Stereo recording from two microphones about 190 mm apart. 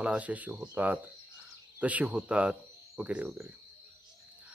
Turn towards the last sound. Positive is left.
turn(degrees=-10)  # may be behind; listen again after turning